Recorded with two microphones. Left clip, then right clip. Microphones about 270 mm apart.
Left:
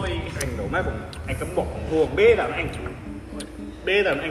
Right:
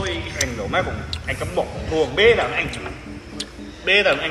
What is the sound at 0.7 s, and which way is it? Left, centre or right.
A man's voice, right.